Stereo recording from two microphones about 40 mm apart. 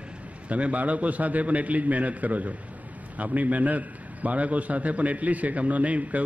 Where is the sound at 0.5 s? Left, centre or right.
Right.